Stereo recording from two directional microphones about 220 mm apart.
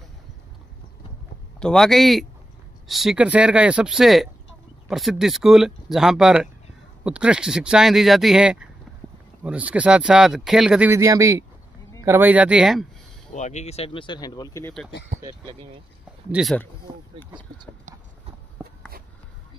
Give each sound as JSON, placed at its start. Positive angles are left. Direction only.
{"t": 1.6, "sound": "speech", "side_deg": 0}
{"t": 13.3, "sound": "speech", "side_deg": 30}
{"t": 16.3, "sound": "speech", "side_deg": -5}
{"t": 17.3, "sound": "speech", "side_deg": -20}